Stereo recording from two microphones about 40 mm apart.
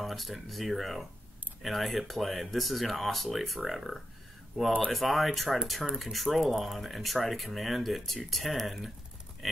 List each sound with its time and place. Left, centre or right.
0.0 s speech: centre